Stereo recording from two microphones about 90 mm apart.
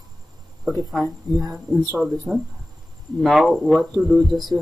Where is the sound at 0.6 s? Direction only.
Centre (ahead or behind).